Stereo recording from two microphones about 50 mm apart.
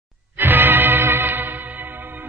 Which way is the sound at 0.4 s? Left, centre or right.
Right.